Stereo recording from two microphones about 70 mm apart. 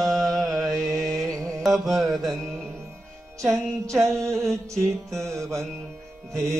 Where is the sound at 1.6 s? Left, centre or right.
Centre.